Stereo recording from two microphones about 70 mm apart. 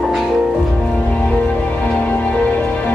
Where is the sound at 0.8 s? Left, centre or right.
Centre.